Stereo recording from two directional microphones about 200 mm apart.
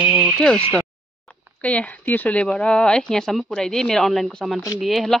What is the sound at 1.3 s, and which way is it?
Speech, 5° left (ahead or behind).